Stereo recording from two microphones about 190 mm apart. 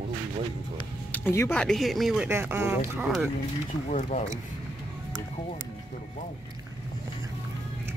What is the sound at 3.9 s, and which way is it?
Speech, 40° left (ahead or behind).